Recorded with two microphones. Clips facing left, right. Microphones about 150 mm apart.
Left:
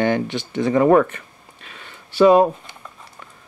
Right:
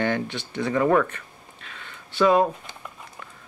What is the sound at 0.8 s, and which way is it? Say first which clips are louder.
Speech: left 6 dB; 30° left (ahead or behind).